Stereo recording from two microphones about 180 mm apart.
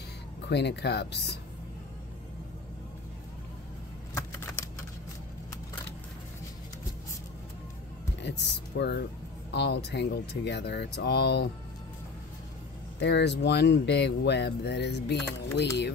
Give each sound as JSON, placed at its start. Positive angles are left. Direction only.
{"t": 0.5, "sound": "speech", "side_deg": 70}
{"t": 4.1, "sound": "typing", "side_deg": 15}
{"t": 8.2, "sound": "speech", "side_deg": 70}
{"t": 13.0, "sound": "speech", "side_deg": 70}